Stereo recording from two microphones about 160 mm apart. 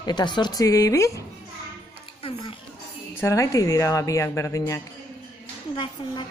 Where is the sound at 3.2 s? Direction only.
20° left (ahead or behind).